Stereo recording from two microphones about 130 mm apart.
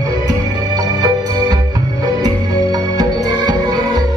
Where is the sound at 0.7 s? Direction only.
30° right (ahead or behind).